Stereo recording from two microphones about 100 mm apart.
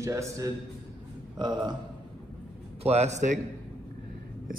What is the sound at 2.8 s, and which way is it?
Speech, 90° right.